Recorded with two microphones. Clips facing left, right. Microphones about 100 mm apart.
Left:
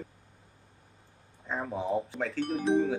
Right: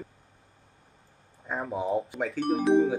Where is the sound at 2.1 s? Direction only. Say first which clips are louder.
Right 2 dB; 10° right (ahead or behind).